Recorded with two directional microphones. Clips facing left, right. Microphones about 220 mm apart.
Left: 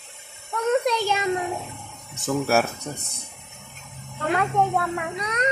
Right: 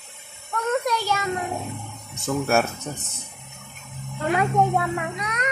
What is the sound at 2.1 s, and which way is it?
Speech, centre (ahead or behind).